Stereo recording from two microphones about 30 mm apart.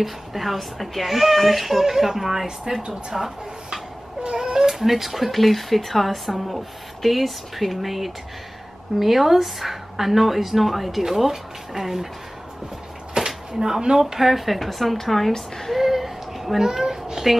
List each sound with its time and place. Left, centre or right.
0.0 s a woman's voice: centre
4.2 s a sound: right
4.8 s a woman's voice: centre
13.2 s a sound: right
13.6 s speech: right
13.9 s speech: centre
15.3 s speech: centre
15.7 s a sound: centre
16.6 s a woman's voice: centre